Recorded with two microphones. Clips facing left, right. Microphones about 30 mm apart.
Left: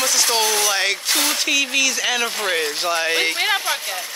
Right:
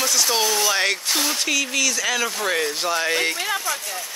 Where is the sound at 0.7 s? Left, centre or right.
Centre.